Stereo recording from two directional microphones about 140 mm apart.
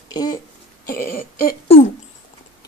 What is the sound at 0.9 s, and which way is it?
Throat clearing, 90° left.